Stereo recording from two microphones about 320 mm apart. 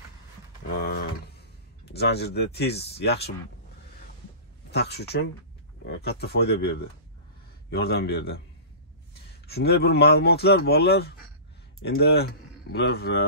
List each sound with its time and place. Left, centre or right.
0.7 s a sound: left
1.9 s speech: left
4.6 s speech: left